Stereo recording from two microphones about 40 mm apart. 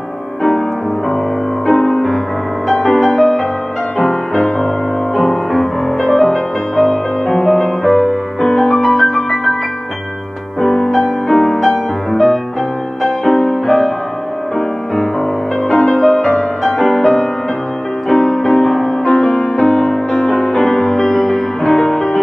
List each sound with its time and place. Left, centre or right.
1.7 s music: centre
4.0 s music: centre
10.6 s music: centre
15.7 s music: centre